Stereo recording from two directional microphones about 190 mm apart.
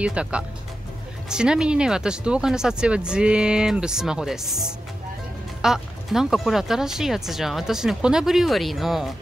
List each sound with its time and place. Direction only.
0.0 s speech: 5° right (ahead or behind)